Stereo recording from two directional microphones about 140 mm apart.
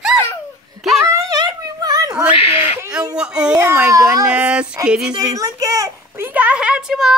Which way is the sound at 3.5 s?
20° right (ahead or behind).